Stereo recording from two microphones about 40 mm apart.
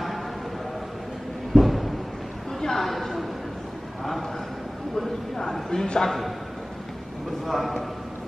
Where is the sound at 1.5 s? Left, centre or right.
Centre.